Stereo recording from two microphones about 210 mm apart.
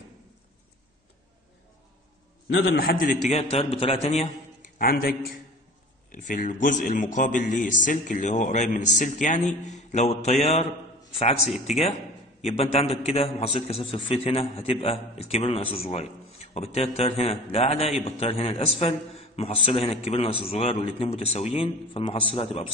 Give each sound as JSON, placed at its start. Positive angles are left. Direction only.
{"t": 2.5, "sound": "a man's voice", "side_deg": 50}
{"t": 3.3, "sound": "a man's voice", "side_deg": 30}
{"t": 6.1, "sound": "a man's voice", "side_deg": 40}